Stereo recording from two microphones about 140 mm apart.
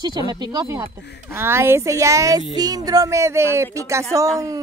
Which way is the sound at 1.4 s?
20° right (ahead or behind).